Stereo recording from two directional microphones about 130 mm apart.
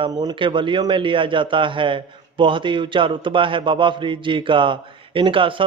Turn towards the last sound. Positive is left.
turn(degrees=-40)  # may be behind; listen again after turning